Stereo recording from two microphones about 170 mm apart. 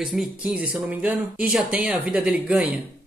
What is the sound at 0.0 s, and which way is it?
Speech, 5° right (ahead or behind).